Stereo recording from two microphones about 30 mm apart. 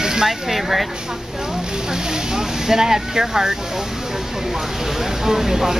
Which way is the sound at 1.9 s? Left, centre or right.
Centre.